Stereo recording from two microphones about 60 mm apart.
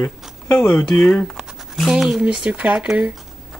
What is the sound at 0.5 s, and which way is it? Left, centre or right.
Speech, left.